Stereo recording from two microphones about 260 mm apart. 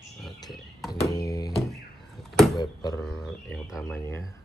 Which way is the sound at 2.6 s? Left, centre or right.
Centre.